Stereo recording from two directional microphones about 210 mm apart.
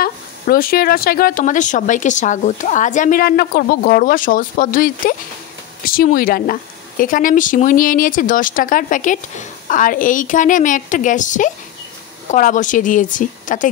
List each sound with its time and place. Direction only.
0.0 s a woman's voice: 45° left (ahead or behind)